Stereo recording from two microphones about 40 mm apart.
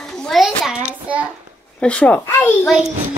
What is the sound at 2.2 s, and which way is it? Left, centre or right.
Speech, left.